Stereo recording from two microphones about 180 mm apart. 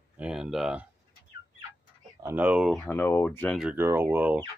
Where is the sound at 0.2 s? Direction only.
5° right (ahead or behind).